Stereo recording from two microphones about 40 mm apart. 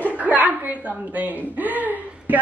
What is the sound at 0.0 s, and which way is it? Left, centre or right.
A woman's voice, right.